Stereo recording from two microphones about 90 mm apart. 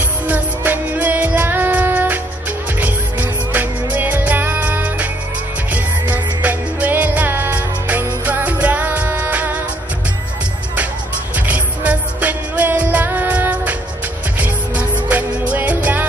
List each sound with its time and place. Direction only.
0.3 s music: 20° right (ahead or behind)
11.3 s music: 15° right (ahead or behind)